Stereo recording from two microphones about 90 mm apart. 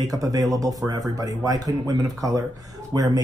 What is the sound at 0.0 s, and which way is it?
Speech, 40° right (ahead or behind).